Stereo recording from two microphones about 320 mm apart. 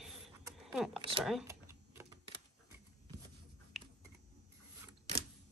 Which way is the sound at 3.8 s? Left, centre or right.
Centre.